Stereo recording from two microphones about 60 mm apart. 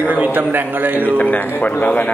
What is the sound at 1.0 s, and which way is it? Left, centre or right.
A man's voice, left.